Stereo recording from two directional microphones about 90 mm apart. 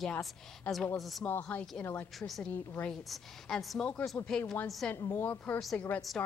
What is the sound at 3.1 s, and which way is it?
A woman's voice, centre (ahead or behind).